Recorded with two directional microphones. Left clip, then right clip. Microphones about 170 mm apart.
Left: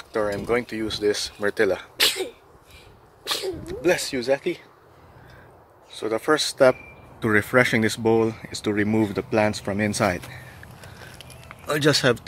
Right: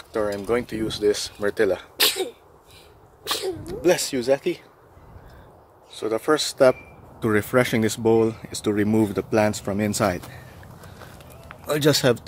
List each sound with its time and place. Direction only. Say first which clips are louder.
0.1 s speech: even; 5° right (ahead or behind)
2.0 s sneeze: even; 50° right (ahead or behind)
3.3 s speech: right 1 dB; 30° right (ahead or behind)
3.6 s speech: right 2 dB; 20° right (ahead or behind)
5.9 s speech: even; centre (ahead or behind)
11.6 s speech: even; 10° right (ahead or behind)